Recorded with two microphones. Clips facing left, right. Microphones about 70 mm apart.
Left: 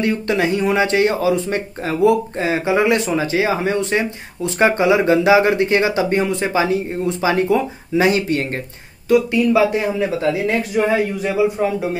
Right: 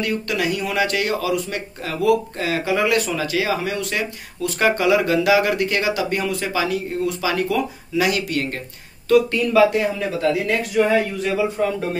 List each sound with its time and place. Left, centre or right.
0.0 s speech: left
9.1 s speech: centre